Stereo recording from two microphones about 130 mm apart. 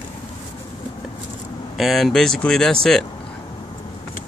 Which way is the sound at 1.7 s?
Centre (ahead or behind).